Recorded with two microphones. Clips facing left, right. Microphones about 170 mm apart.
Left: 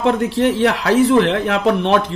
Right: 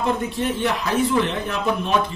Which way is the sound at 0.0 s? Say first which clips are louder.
Left 7 dB; 75° left (ahead or behind).